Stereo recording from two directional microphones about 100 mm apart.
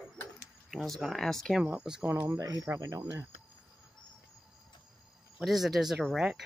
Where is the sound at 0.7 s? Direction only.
Centre (ahead or behind).